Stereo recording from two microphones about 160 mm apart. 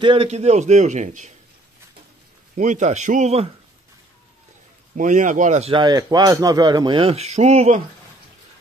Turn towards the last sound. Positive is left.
turn(degrees=-45)  # may be behind; listen again after turning